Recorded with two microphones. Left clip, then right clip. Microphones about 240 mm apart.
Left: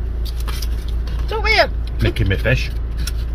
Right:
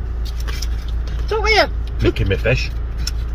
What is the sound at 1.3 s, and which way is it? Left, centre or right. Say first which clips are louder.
Speech: right 1 dB; right.